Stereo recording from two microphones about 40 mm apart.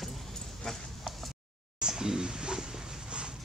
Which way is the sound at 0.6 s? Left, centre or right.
Centre.